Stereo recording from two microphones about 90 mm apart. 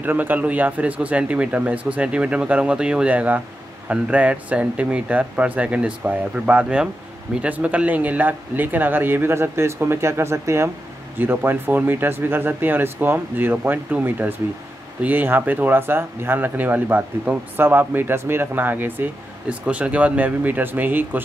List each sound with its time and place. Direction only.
0.0 s speech: 20° right (ahead or behind)